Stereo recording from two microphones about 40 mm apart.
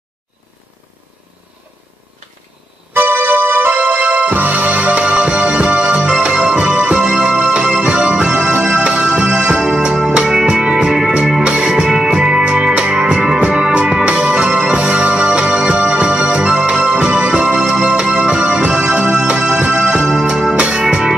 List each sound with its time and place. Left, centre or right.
2.9 s music: right
10.9 s music: centre